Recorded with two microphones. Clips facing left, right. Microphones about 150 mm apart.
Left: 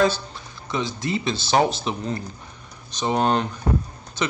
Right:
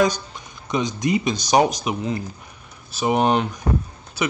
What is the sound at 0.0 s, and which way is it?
A man's voice, 15° right (ahead or behind).